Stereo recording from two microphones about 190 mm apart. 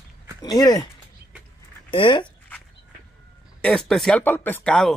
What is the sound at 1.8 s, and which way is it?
Speech, 25° left (ahead or behind).